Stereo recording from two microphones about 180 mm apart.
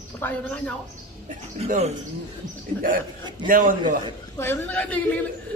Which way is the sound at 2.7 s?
50° right (ahead or behind).